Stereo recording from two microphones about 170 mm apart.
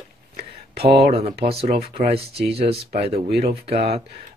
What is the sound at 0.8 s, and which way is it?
Speech, 35° right (ahead or behind).